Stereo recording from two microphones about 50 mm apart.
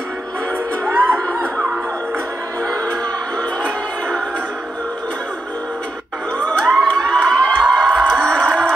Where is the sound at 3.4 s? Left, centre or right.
Centre.